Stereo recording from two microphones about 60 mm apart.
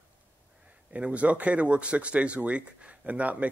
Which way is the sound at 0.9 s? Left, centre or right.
Right.